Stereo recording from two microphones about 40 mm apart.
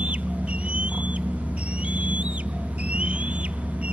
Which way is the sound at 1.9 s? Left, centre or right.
Right.